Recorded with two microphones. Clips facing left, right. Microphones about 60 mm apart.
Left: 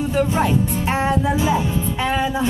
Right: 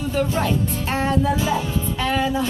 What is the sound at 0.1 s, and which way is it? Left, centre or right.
Speech, left.